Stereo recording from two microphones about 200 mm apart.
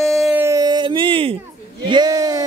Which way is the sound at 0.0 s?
Centre (ahead or behind).